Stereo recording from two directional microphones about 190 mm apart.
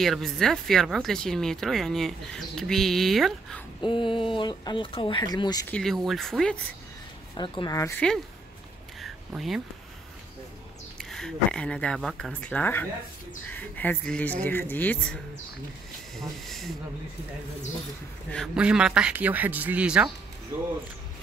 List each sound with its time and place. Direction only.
0.0 s speech: centre (ahead or behind)
3.8 s speech: 25° left (ahead or behind)
5.7 s speech: 5° left (ahead or behind)
7.3 s speech: 25° left (ahead or behind)
9.0 s a sound: centre (ahead or behind)
11.0 s speech: centre (ahead or behind)
16.2 s speech: centre (ahead or behind)
18.3 s speech: centre (ahead or behind)